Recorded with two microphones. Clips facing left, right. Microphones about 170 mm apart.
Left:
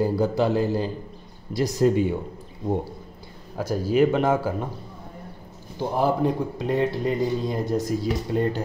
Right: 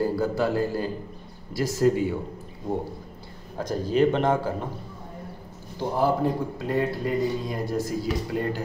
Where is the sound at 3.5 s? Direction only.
10° left (ahead or behind).